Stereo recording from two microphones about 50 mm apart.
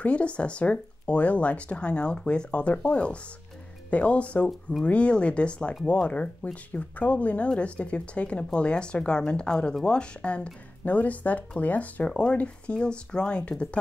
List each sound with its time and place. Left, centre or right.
0.0 s speech: left